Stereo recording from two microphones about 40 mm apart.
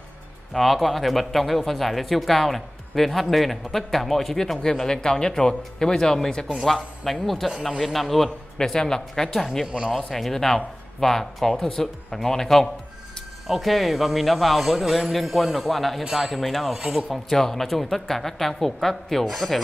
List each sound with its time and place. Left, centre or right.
0.5 s speech: centre
4.6 s speech: centre
8.5 s speech: centre
9.7 s speech: right
10.1 s speech: centre
16.7 s speech: centre
17.1 s speech: centre